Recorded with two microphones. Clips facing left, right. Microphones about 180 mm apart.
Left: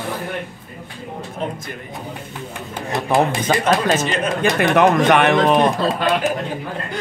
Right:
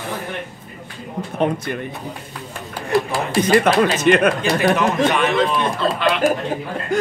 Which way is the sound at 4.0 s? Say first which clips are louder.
Right 7 dB; 60° right (ahead or behind).